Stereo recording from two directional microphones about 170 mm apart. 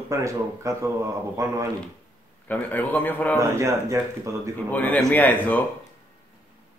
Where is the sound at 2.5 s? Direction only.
10° left (ahead or behind).